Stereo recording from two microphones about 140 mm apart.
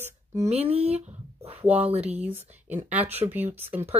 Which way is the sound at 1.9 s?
50° right (ahead or behind).